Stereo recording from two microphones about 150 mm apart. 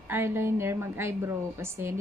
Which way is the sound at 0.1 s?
15° right (ahead or behind).